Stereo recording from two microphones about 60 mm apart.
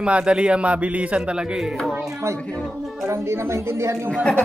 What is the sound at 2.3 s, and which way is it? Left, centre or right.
Speech, centre.